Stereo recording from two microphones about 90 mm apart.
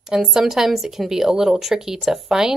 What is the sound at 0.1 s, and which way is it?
Speech, 5° right (ahead or behind).